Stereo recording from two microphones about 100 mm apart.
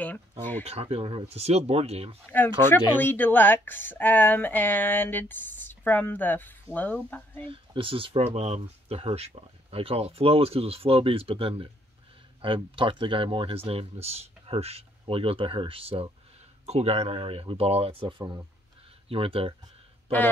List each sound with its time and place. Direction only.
0.4 s speech: 20° left (ahead or behind)
0.7 s speech: 90° right
2.2 s speech: 20° left (ahead or behind)
7.4 s speech: 65° right (ahead or behind)
8.4 s speech: 90° right; by 16.1 s 70° right (ahead or behind)
16.6 s speech: 90° right; by 18.3 s 60° right (ahead or behind)
19.0 s speech: 70° right (ahead or behind)